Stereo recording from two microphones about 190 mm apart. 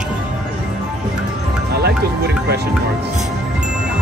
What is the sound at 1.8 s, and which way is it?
Music, 60° right (ahead or behind).